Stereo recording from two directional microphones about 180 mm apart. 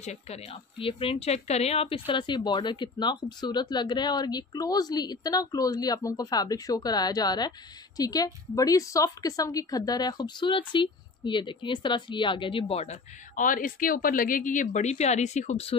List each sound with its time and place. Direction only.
0.0 s a woman's voice: 40° left (ahead or behind)